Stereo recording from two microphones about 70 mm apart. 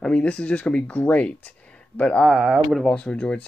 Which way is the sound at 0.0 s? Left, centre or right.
Centre.